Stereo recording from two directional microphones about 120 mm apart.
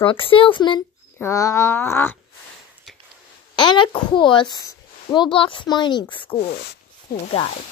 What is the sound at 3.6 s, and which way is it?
A child's voice, 45° left (ahead or behind).